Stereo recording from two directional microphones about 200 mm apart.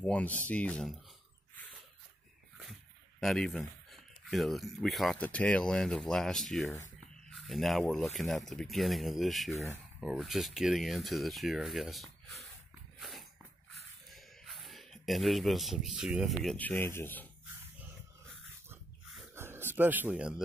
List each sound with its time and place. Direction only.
0.0 s speech: 5° left (ahead or behind)
3.2 s speech: centre (ahead or behind)
14.1 s a sound: centre (ahead or behind)
16.4 s speech: 10° left (ahead or behind)
18.7 s oink: 10° right (ahead or behind)